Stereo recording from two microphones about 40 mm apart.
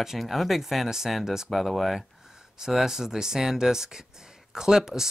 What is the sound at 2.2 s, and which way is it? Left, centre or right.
Speech, centre.